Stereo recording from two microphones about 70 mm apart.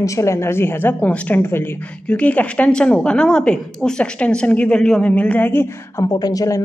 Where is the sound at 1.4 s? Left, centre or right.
Left.